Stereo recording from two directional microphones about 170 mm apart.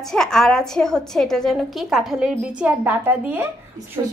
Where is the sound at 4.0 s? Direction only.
20° right (ahead or behind).